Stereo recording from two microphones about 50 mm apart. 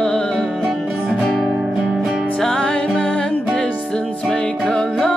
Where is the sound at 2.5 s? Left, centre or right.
Left.